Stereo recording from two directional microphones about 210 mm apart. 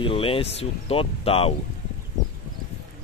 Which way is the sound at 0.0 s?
25° left (ahead or behind).